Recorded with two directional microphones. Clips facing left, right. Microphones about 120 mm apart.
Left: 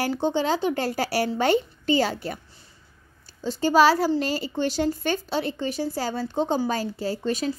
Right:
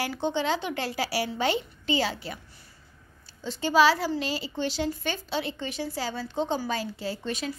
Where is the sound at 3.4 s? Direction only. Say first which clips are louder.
Left 3 dB; 45° left (ahead or behind).